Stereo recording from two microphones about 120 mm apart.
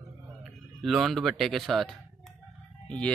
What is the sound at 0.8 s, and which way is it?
Speech, centre (ahead or behind).